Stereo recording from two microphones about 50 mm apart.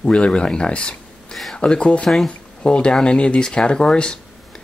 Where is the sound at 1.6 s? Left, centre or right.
Left.